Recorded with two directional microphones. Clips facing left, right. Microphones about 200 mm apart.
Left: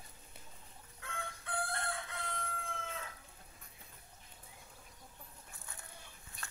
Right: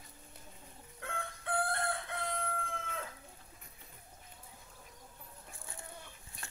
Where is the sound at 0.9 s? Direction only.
60° right (ahead or behind).